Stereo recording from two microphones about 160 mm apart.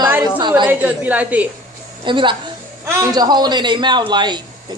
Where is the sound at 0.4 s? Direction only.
30° right (ahead or behind).